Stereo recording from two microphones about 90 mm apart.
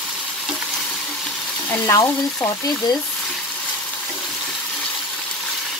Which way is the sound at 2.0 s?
40° left (ahead or behind).